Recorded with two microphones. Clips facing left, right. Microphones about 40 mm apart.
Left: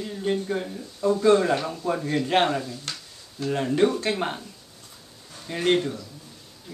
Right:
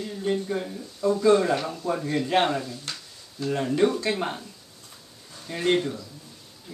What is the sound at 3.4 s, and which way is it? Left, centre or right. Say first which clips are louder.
Speech: left 1 dB; centre.